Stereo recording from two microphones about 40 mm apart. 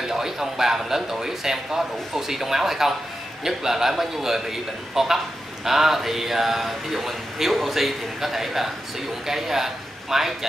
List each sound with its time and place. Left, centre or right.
0.0 s a man's voice: centre